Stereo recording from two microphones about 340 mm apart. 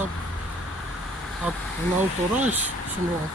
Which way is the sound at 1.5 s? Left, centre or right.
Centre.